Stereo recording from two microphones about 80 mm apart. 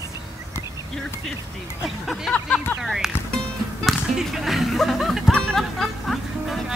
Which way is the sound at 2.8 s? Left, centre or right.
Centre.